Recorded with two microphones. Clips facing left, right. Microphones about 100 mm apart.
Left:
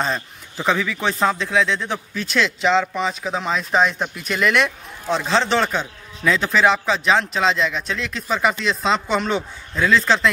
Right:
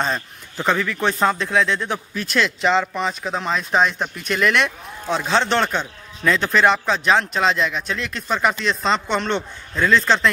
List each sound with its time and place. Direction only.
0.0 s speech: centre (ahead or behind)